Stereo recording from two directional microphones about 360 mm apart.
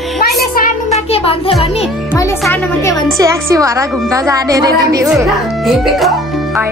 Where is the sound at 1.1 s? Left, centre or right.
Centre.